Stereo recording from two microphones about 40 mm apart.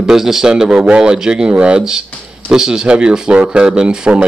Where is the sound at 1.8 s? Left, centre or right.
Centre.